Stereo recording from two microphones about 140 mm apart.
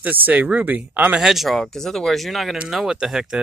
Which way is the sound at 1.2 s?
Centre (ahead or behind).